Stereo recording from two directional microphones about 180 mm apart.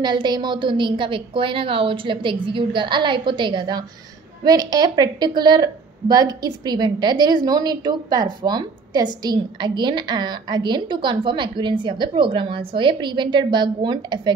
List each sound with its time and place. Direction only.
0.0 s a woman's voice: 25° right (ahead or behind)